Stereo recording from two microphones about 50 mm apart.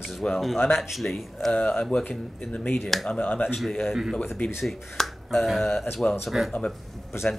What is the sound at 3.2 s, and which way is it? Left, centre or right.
Speech, left.